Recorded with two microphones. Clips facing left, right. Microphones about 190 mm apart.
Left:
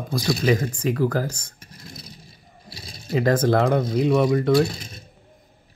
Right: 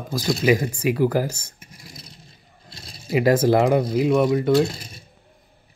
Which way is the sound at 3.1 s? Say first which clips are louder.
Right 2 dB; 10° right (ahead or behind).